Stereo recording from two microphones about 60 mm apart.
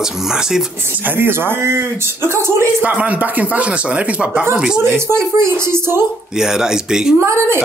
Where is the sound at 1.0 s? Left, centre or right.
Right.